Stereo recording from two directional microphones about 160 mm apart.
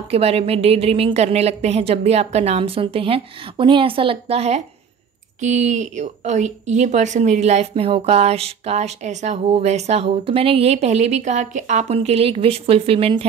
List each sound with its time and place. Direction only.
0.1 s a woman's voice: 40° right (ahead or behind)